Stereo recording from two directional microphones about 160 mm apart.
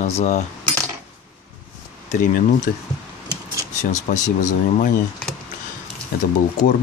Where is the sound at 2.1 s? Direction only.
50° left (ahead or behind).